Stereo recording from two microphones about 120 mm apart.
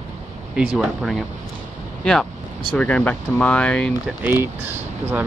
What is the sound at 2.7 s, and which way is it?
Speech, 10° left (ahead or behind).